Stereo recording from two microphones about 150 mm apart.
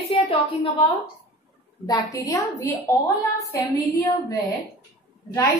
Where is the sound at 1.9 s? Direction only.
25° left (ahead or behind).